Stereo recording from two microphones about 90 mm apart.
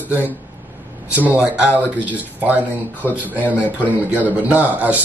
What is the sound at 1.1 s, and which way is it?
A man's voice, 20° right (ahead or behind).